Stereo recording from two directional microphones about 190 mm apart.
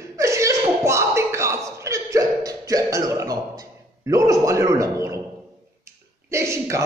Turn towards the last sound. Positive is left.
turn(degrees=-15)  # may be behind; listen again after turning